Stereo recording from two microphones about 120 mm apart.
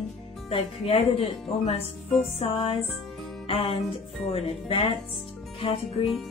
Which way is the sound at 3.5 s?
50° left (ahead or behind).